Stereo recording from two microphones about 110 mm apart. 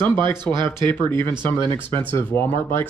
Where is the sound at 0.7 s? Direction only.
25° left (ahead or behind).